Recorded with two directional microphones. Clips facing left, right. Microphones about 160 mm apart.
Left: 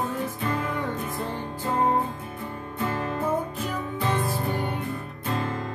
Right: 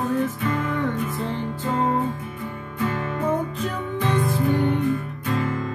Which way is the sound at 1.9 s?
30° left (ahead or behind).